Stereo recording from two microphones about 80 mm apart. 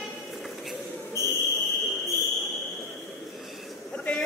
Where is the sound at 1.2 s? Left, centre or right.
Left.